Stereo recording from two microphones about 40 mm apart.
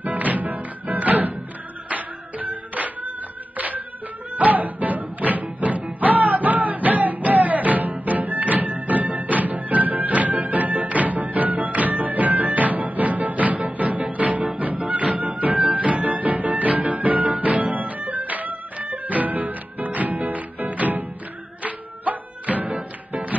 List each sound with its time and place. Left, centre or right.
0.0 s music: right
3.5 s clapping: right
4.4 s music: right